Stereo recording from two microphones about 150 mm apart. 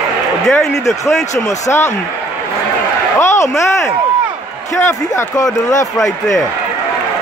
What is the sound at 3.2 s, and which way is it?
Speech, 20° left (ahead or behind).